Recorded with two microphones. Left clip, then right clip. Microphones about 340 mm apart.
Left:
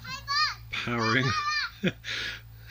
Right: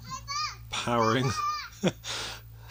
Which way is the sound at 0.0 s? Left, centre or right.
Left.